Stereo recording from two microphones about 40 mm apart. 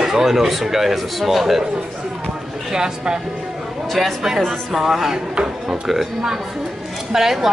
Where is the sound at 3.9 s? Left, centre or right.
Centre.